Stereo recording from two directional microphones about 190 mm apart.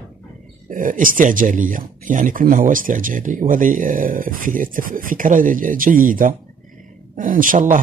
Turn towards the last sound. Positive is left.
turn(degrees=-45)  # may be behind; listen again after turning